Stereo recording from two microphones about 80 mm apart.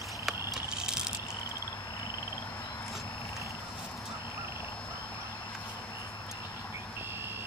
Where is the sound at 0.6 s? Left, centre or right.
Centre.